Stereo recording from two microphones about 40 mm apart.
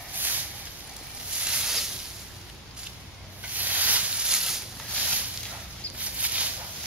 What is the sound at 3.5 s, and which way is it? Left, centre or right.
Rub, right.